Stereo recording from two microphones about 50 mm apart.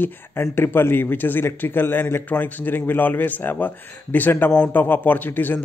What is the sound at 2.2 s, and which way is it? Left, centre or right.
A man's voice, left.